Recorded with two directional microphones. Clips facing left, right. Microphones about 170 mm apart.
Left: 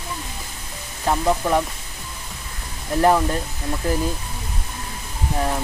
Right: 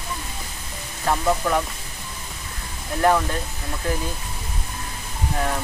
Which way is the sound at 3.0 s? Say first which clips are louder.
Left 2 dB; 20° left (ahead or behind).